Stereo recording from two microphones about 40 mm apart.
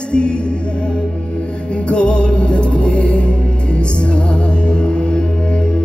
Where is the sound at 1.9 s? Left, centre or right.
Left.